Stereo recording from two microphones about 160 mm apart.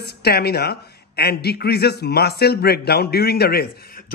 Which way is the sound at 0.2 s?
85° left.